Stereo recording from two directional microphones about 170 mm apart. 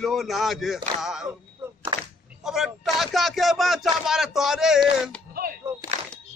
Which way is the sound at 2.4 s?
Centre (ahead or behind).